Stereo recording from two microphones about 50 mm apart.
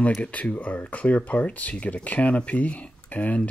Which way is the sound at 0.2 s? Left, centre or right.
Left.